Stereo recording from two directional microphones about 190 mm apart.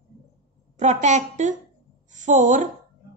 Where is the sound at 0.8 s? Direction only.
40° right (ahead or behind).